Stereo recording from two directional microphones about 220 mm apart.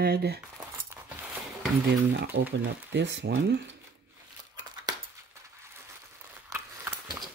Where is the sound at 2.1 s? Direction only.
50° right (ahead or behind).